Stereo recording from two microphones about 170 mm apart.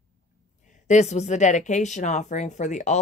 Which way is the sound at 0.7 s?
45° left (ahead or behind).